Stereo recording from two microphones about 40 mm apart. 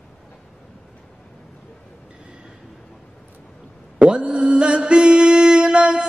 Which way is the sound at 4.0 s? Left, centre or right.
Right.